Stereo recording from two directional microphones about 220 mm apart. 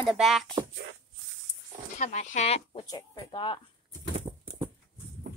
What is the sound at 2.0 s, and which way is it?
Speech, 35° left (ahead or behind).